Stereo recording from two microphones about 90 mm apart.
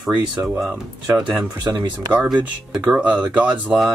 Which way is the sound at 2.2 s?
5° right (ahead or behind).